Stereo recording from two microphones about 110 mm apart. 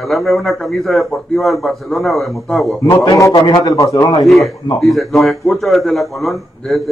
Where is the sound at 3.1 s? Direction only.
30° left (ahead or behind).